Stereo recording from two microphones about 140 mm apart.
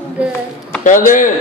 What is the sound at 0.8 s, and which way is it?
Speech, 70° left (ahead or behind).